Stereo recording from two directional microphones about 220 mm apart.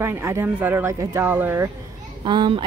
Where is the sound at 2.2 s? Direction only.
20° right (ahead or behind).